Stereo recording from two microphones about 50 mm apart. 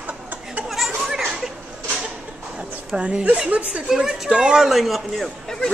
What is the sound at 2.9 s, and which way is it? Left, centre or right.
Speech, right.